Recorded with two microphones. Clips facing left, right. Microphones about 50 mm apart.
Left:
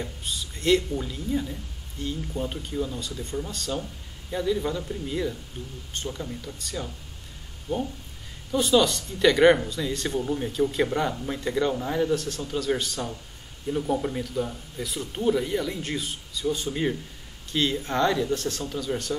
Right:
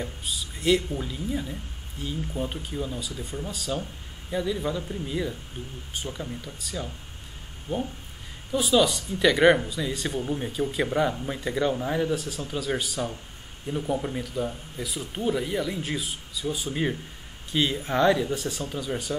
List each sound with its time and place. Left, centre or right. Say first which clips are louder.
0.0 s speech: even; centre
5.6 s speech: even; centre
5.9 s speech: left 1 dB; centre
7.7 s speech: left 1 dB; right
8.5 s speech: left 1 dB; centre